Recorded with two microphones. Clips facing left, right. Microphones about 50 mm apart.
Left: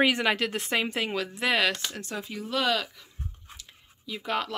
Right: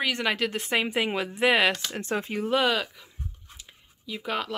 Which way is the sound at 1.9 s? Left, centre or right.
Right.